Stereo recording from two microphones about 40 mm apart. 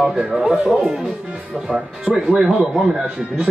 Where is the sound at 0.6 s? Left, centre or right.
Centre.